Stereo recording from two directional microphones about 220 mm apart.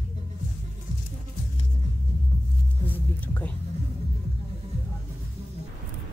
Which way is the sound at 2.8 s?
10° left (ahead or behind).